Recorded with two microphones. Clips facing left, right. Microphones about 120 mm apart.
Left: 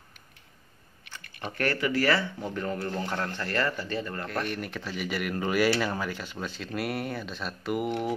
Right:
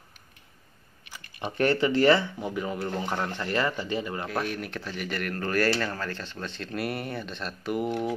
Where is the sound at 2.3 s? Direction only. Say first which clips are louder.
Right 1 dB; 10° right (ahead or behind).